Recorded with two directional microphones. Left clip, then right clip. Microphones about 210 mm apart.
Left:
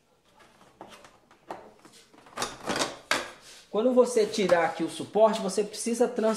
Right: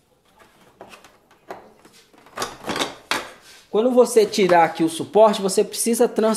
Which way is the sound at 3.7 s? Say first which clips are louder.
Right 7 dB; 50° right (ahead or behind).